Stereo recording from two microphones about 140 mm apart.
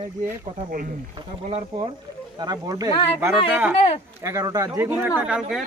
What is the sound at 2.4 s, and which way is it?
Speech, 30° right (ahead or behind).